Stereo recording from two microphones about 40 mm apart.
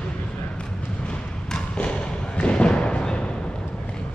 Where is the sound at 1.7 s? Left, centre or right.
Left.